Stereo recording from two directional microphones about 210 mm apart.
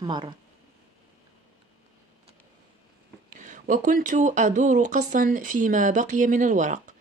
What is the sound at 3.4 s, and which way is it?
Speech, 40° right (ahead or behind).